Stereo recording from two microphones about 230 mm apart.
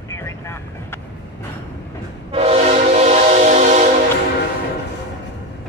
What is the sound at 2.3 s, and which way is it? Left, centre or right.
Train, right.